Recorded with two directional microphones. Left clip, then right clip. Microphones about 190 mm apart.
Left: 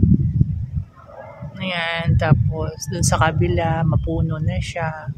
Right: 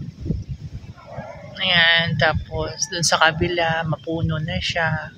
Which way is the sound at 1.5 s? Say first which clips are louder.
Right 8 dB; 10° left (ahead or behind).